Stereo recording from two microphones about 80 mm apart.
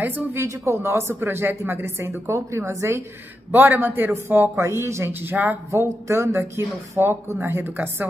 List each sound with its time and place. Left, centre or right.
0.0 s a man's voice: right
0.4 s a woman's voice: right
3.5 s a man's voice: right
4.6 s a woman's voice: right
5.7 s a woman's voice: right